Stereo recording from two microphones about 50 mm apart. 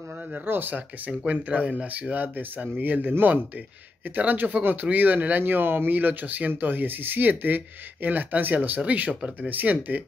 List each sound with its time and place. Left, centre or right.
0.5 s speech: right